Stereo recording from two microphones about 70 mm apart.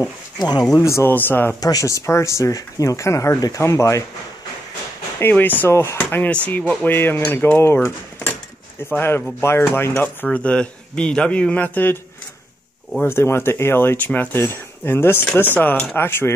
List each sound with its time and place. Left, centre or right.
0.4 s speech: left
0.8 s speech: left
1.1 s speech: left
1.6 s speech: left
5.3 s speech: left
5.7 s speech: left
5.9 s speech: left
10.3 s a man's voice: centre
13.0 s speech: left